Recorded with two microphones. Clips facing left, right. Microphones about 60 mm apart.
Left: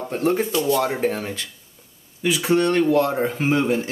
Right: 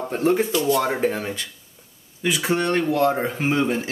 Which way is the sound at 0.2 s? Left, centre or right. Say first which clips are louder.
Right 1 dB; right.